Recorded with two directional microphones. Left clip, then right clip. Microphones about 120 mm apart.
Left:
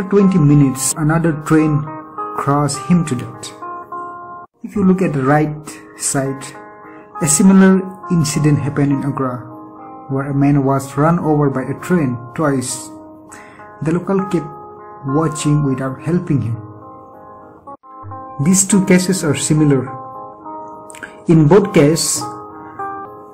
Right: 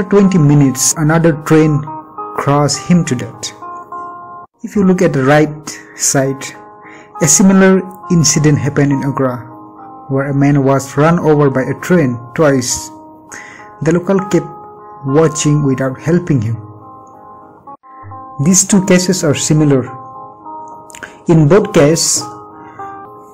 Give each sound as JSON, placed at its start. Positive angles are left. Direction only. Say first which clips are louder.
{"t": 0.1, "sound": "a man's voice", "louder": "right 2 dB", "side_deg": -35}
{"t": 4.6, "sound": "a man's voice", "louder": "right 4 dB", "side_deg": -30}
{"t": 13.8, "sound": "a man's voice", "louder": "right 5 dB", "side_deg": -35}
{"t": 18.4, "sound": "speech", "louder": "right 4 dB", "side_deg": -25}
{"t": 21.6, "sound": "speech", "louder": "right 3 dB", "side_deg": -25}
{"t": 22.2, "sound": "music", "louder": "left 1 dB", "side_deg": 0}